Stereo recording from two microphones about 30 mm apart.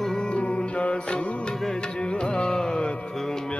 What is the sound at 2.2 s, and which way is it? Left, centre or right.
Carnatic music, left.